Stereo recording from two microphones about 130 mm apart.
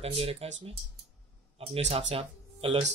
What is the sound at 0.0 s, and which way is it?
Speech, 50° right (ahead or behind).